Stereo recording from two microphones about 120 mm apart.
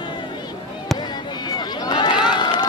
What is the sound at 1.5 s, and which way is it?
Run, 35° left (ahead or behind).